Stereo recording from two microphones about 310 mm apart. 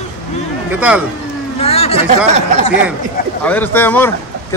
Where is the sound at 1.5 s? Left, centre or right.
Centre.